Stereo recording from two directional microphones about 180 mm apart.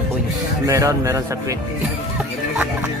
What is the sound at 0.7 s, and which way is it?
Speech, 20° right (ahead or behind).